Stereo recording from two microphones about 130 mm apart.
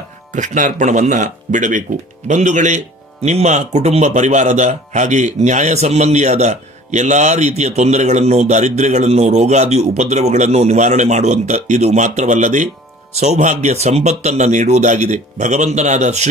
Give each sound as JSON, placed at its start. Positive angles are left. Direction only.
{"t": 0.3, "sound": "speech", "side_deg": -75}